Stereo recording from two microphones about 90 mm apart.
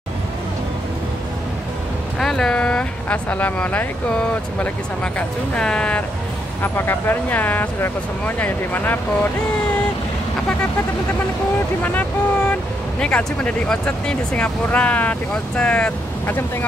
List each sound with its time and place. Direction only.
2.1 s speech: 5° left (ahead or behind)
6.6 s speech: 25° left (ahead or behind)
11.8 s speech: 20° left (ahead or behind)